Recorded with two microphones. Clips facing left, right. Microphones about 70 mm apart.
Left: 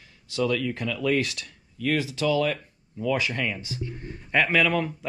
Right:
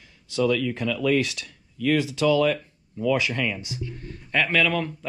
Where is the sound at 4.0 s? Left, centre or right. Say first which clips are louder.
Left 1 dB; centre.